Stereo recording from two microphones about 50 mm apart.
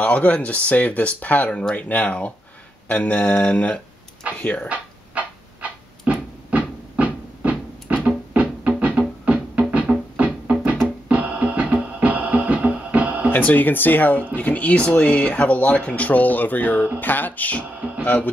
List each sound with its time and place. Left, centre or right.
0.0 s speech: left
4.6 s dog: right
6.5 s music: right
8.6 s music: centre
13.3 s speech: left